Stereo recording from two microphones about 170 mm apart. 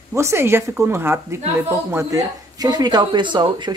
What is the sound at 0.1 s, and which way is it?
Speech, 15° right (ahead or behind).